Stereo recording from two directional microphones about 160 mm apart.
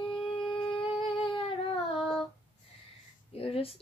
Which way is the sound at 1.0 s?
35° left (ahead or behind).